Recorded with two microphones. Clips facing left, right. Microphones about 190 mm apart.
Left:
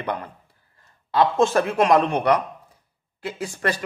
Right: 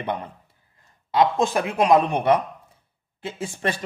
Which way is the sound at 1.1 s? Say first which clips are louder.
Left 2 dB; 15° right (ahead or behind).